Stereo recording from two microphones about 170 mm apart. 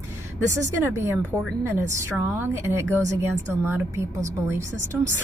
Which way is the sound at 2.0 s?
15° right (ahead or behind).